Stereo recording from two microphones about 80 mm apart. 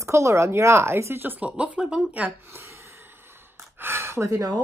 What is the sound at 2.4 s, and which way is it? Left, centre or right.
Gasp, right.